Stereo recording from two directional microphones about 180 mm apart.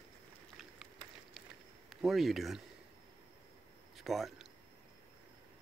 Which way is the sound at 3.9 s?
Centre (ahead or behind).